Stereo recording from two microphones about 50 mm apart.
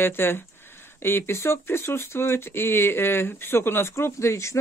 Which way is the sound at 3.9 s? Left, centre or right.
Left.